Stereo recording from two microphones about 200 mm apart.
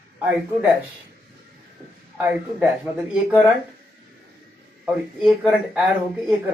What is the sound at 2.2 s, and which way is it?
Speech, 5° right (ahead or behind).